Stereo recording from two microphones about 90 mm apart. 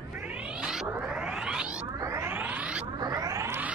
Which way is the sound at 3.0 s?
40° right (ahead or behind).